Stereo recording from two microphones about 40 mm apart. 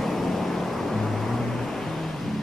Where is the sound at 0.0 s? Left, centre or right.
Centre.